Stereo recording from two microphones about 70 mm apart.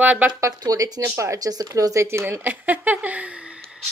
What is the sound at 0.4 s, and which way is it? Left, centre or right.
Speech, right.